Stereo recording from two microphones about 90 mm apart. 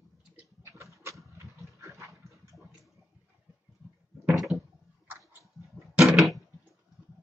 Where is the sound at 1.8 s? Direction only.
35° right (ahead or behind).